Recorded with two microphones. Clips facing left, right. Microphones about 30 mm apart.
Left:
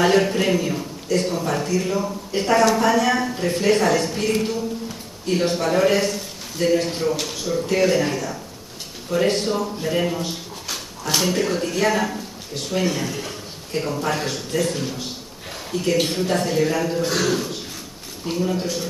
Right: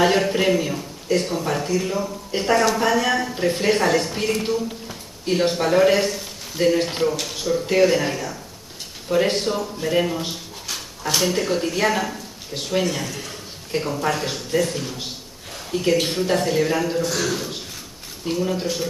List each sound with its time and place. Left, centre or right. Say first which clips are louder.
0.0 s a man's voice: even; centre
7.1 s a man's voice: even; centre
17.0 s a man's voice: left 2 dB; centre
18.2 s speech: even; centre